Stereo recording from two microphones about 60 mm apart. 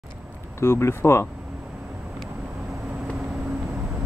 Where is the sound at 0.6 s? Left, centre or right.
Left.